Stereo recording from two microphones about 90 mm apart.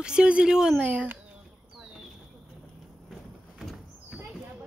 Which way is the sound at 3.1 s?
Centre (ahead or behind).